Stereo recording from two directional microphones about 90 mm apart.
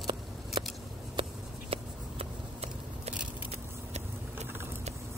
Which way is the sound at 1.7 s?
90° right.